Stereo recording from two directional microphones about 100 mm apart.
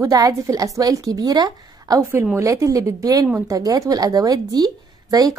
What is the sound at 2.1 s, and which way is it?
A woman's voice, 30° right (ahead or behind).